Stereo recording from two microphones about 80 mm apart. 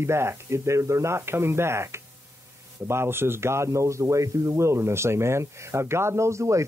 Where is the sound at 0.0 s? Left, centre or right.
Right.